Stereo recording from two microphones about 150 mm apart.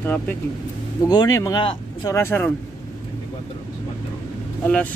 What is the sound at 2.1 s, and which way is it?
Speech, 15° left (ahead or behind).